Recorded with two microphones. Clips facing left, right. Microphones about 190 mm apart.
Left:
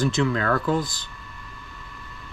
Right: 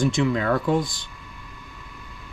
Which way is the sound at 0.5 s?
25° right (ahead or behind).